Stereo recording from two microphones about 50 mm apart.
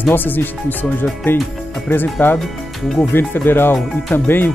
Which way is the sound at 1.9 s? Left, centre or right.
Left.